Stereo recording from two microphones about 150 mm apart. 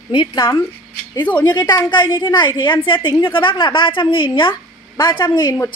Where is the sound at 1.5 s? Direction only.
30° left (ahead or behind).